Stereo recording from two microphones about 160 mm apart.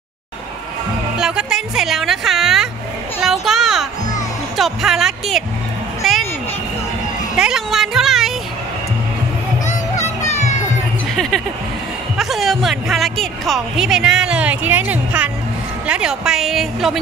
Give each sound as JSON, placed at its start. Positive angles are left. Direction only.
{"t": 1.1, "sound": "speech", "side_deg": -5}
{"t": 3.2, "sound": "children playing", "side_deg": 0}
{"t": 4.6, "sound": "speech", "side_deg": 0}
{"t": 6.0, "sound": "a sound", "side_deg": 0}
{"t": 7.3, "sound": "music", "side_deg": -5}
{"t": 9.7, "sound": "music", "side_deg": 45}
{"t": 11.1, "sound": "a sound", "side_deg": 0}
{"t": 12.2, "sound": "speech", "side_deg": 0}